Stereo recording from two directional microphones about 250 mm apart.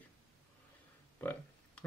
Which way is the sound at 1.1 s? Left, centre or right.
Centre.